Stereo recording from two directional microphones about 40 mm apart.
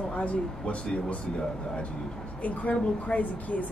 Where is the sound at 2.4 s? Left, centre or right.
Left.